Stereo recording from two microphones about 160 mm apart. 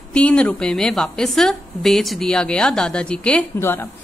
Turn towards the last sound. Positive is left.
turn(degrees=15)  # may be behind; listen again after turning